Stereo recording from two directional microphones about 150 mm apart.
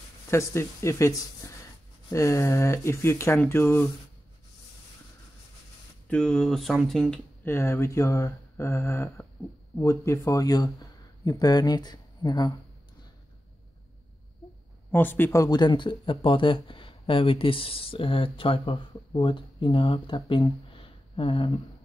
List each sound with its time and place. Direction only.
0.3 s speech: 20° left (ahead or behind)
1.4 s a sound: 20° left (ahead or behind)
2.0 s speech: 20° left (ahead or behind)
6.0 s speech: 5° left (ahead or behind)
7.4 s speech: 20° left (ahead or behind)
14.9 s speech: 15° left (ahead or behind); by 21.5 s 35° left (ahead or behind)